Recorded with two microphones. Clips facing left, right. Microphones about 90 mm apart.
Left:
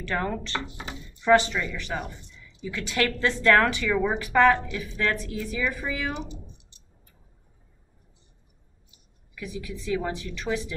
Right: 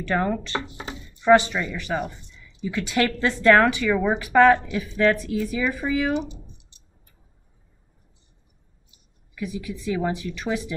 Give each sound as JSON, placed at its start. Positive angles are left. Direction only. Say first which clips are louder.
{"t": 0.1, "sound": "speech", "louder": "right 5 dB", "side_deg": -20}
{"t": 9.3, "sound": "speech", "louder": "right 5 dB", "side_deg": -15}